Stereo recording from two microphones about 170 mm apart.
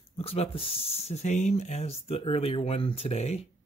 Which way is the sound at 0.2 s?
35° left (ahead or behind).